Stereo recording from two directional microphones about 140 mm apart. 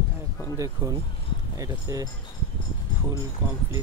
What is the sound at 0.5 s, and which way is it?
Speech, 25° right (ahead or behind).